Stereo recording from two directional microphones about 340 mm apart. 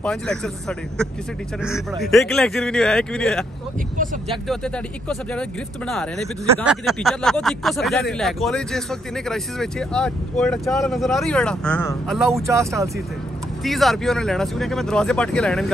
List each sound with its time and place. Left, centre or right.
0.0 s speech: centre
4.5 s speech: centre